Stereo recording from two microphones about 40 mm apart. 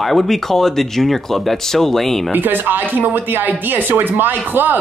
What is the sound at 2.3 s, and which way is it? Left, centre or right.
Speech, right.